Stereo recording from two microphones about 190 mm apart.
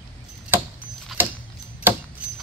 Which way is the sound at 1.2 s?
10° right (ahead or behind).